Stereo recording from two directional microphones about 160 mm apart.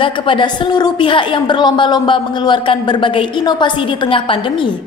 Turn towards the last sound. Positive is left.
turn(degrees=30)  # may be behind; listen again after turning